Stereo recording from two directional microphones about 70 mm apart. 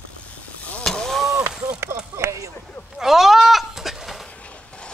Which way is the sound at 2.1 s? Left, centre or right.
Right.